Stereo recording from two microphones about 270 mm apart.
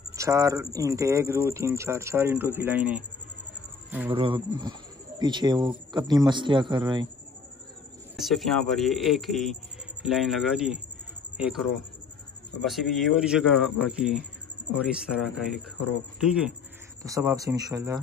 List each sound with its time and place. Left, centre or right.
0.1 s speech: centre
4.1 s speech: centre
8.2 s speech: centre
12.6 s speech: centre